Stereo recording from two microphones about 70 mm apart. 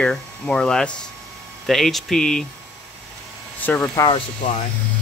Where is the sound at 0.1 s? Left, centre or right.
Centre.